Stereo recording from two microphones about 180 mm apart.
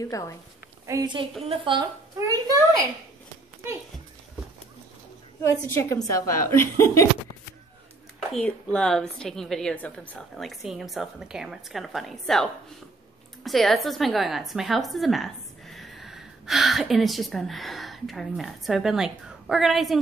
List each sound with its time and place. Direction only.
0.0 s a woman's voice: 20° left (ahead or behind)
0.8 s a woman's voice: 20° right (ahead or behind)
5.8 s a woman's voice: 15° left (ahead or behind)
8.3 s a woman's voice: 5° left (ahead or behind)